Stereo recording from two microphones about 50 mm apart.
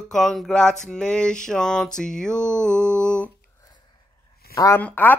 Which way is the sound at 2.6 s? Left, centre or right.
Centre.